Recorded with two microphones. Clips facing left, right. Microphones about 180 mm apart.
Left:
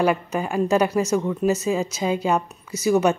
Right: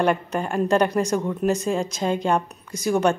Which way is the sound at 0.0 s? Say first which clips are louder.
Left 1 dB; 5° left (ahead or behind).